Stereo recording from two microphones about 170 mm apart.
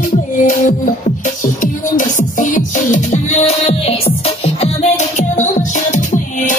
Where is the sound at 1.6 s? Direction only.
50° left (ahead or behind).